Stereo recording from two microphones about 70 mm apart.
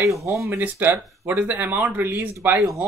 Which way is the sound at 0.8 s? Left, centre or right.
Right.